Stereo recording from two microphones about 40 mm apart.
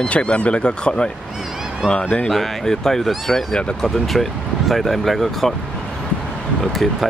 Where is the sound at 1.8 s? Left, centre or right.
Centre.